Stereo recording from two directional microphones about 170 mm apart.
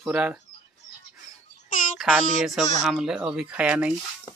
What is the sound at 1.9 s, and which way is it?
Speech, 5° right (ahead or behind).